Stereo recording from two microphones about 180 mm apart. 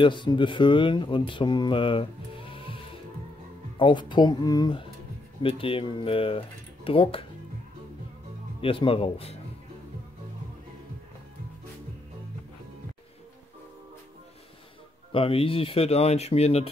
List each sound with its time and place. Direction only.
0.0 s speech: 25° left (ahead or behind)
2.5 s music: 30° left (ahead or behind)
3.7 s speech: 25° left (ahead or behind)
8.5 s speech: 30° left (ahead or behind)
15.1 s speech: 30° left (ahead or behind)